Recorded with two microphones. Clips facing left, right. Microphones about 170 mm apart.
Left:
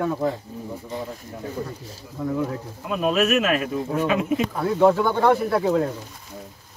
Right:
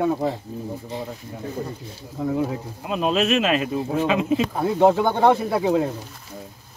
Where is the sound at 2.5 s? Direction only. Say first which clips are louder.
Right 1 dB; 25° right (ahead or behind).